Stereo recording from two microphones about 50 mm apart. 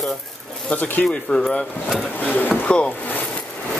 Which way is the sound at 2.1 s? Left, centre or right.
Left.